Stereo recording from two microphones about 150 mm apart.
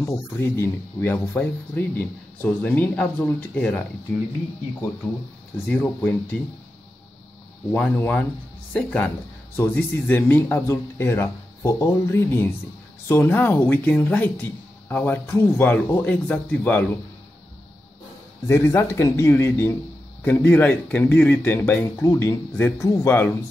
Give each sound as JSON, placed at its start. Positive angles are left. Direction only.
{"t": 0.0, "sound": "speech", "side_deg": 15}
{"t": 5.7, "sound": "speech", "side_deg": 10}
{"t": 7.7, "sound": "speech", "side_deg": 10}
{"t": 18.5, "sound": "speech", "side_deg": 15}